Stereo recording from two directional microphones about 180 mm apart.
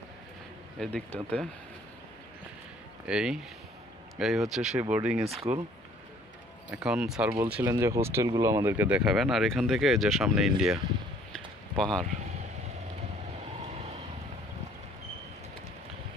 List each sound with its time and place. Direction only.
0.7 s speech: 5° left (ahead or behind)
3.1 s speech: 5° right (ahead or behind)
6.7 s speech: 5° right (ahead or behind)
11.3 s a sound: 5° left (ahead or behind)